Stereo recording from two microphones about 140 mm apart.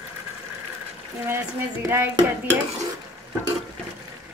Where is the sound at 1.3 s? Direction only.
15° right (ahead or behind).